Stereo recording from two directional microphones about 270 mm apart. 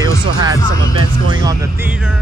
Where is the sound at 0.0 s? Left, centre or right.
Centre.